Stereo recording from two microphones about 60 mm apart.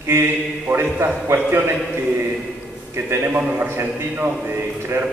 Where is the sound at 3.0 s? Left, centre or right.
Right.